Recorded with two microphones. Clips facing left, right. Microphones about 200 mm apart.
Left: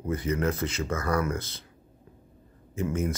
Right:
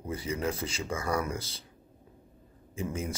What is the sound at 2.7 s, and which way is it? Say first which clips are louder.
Speech: left 6 dB; 10° right (ahead or behind).